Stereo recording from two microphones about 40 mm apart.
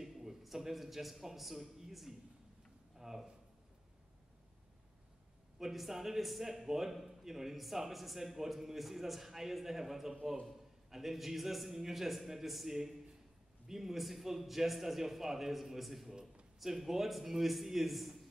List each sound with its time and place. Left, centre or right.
0.0 s a man's voice: centre
5.6 s a man's voice: centre